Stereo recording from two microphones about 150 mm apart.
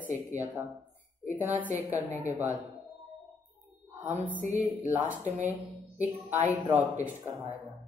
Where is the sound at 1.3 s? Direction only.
10° right (ahead or behind).